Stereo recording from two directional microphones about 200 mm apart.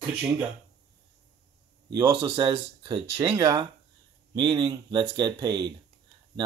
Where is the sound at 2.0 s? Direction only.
20° right (ahead or behind).